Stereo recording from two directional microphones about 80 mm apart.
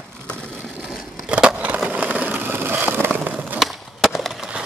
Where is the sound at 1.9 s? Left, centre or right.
Right.